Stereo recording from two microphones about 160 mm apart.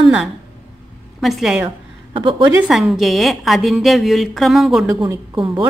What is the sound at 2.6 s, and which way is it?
A woman's voice, centre (ahead or behind).